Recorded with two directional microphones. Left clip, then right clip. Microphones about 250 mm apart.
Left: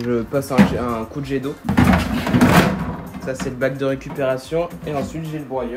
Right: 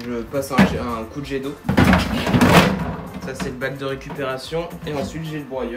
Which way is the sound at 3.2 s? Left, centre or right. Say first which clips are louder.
Left 5 dB; centre.